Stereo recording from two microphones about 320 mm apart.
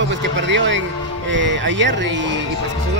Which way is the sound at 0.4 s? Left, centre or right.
Right.